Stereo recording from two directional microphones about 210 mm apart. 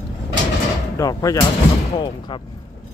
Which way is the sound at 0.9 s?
15° left (ahead or behind).